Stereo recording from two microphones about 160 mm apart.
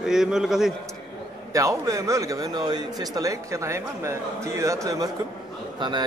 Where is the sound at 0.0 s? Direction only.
5° right (ahead or behind).